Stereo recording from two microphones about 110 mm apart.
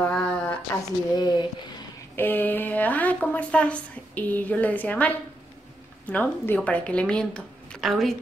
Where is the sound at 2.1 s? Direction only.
15° left (ahead or behind).